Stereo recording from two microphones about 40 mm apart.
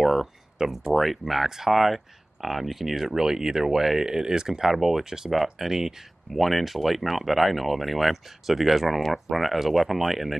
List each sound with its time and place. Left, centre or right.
0.0 s a sound: centre
0.6 s speech: centre
0.9 s speech: centre